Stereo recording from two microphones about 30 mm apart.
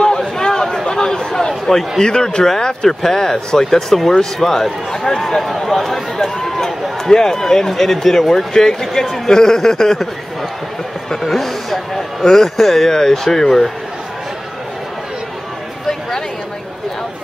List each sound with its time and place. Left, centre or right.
0.0 s a sound: left
1.7 s speech: centre
2.0 s a man's voice: left; by 8.5 s centre
8.5 s a man's voice: left
9.0 s speech: centre
9.3 s speech: centre
11.2 s speech: centre